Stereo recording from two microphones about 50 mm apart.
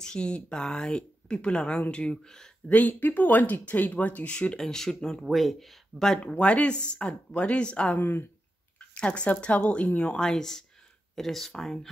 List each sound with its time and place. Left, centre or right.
0.0 s speech: centre
2.7 s speech: left
4.6 s speech: centre
5.2 s speech: centre
6.1 s speech: left
7.9 s speech: left
8.7 s speech: left; by 11.9 s centre